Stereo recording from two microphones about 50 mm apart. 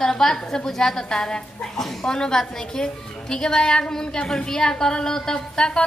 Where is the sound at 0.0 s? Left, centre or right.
Centre.